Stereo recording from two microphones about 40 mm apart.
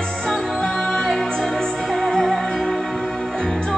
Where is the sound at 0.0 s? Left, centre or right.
Centre.